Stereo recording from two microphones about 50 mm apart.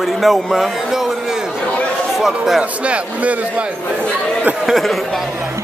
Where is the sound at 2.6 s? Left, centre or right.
Right.